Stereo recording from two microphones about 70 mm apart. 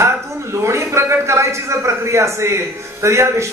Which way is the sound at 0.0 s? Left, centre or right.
Right.